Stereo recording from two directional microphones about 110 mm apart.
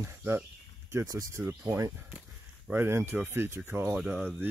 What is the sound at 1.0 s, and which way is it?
Speech, 35° right (ahead or behind).